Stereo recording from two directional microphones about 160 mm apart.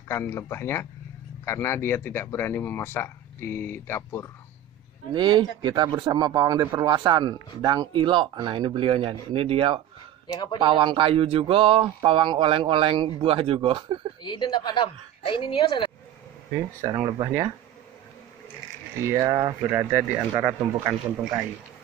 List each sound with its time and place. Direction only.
0.1 s speech: 15° left (ahead or behind)
5.1 s speech: 30° right (ahead or behind)
10.2 s speech: 25° left (ahead or behind)
10.6 s speech: 30° right (ahead or behind)
14.2 s a woman's voice: 30° left (ahead or behind)
16.8 s speech: 20° right (ahead or behind)
19.0 s speech: 20° right (ahead or behind)